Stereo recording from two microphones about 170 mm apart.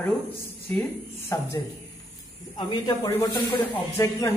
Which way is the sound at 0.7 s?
10° left (ahead or behind).